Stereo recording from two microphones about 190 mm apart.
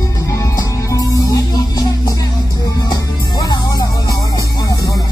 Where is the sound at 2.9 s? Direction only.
20° left (ahead or behind).